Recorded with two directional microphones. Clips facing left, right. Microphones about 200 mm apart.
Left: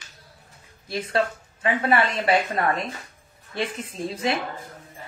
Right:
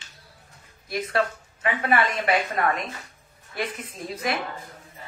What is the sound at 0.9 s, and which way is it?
A woman's voice, 30° left (ahead or behind).